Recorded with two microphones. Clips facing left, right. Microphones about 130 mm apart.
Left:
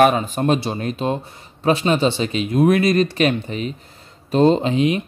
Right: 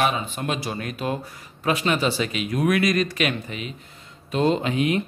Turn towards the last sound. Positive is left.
turn(degrees=25)  # may be behind; listen again after turning